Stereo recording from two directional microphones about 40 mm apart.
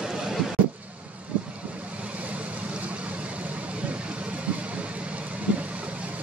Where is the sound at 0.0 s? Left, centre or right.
Centre.